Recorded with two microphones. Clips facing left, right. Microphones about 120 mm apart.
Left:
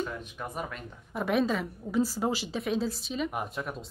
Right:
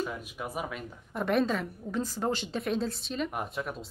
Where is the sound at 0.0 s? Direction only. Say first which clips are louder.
Even; 5° right (ahead or behind).